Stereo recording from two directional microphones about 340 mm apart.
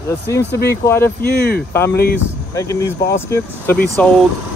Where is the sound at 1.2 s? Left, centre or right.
Left.